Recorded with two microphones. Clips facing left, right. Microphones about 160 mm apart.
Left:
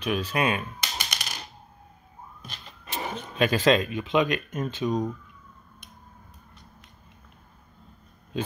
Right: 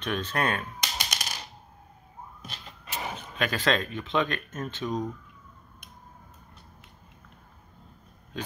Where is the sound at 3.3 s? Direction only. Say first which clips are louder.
Left 6 dB; 20° left (ahead or behind).